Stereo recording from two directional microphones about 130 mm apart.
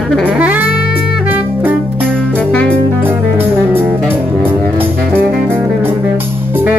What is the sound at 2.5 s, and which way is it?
Music, 10° left (ahead or behind).